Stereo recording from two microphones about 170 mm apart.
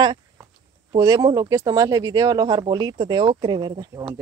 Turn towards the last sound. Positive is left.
turn(degrees=-25)  # may be behind; listen again after turning